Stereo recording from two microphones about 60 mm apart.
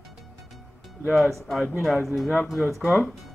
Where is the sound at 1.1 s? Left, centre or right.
Centre.